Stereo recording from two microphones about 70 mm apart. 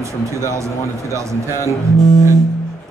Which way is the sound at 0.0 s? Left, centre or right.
Right.